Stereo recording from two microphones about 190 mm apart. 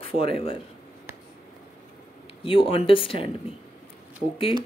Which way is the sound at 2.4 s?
25° left (ahead or behind).